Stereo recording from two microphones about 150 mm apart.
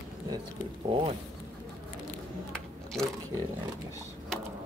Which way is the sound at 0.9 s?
40° right (ahead or behind).